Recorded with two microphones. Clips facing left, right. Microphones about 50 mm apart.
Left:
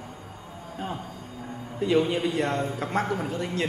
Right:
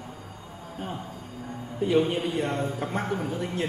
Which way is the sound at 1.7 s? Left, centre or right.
Left.